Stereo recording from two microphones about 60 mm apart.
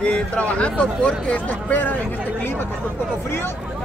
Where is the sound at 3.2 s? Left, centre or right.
Left.